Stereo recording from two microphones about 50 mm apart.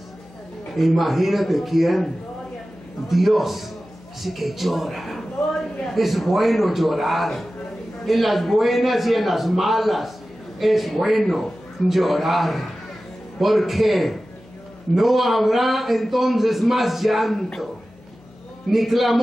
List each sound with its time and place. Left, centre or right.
0.7 s a man's voice: centre
3.1 s a man's voice: centre
18.7 s a man's voice: centre